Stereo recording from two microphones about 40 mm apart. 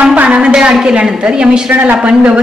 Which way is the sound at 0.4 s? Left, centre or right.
Right.